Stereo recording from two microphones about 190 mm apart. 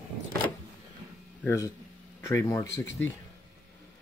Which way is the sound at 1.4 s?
15° left (ahead or behind).